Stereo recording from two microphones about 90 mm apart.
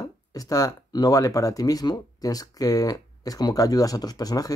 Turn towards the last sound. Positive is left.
turn(degrees=45)  # may be behind; listen again after turning